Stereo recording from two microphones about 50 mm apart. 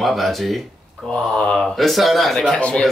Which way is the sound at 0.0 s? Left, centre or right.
Centre.